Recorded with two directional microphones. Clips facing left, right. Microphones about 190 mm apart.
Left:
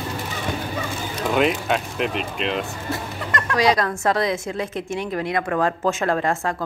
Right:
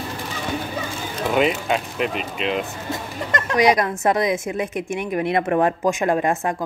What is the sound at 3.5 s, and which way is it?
Speech, 20° right (ahead or behind).